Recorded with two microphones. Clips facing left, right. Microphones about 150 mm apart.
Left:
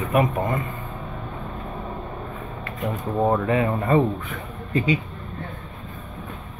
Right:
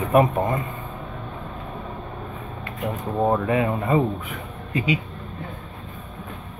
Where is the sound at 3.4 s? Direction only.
20° right (ahead or behind).